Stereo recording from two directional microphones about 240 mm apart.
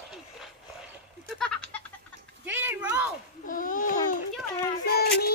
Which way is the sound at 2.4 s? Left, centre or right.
Centre.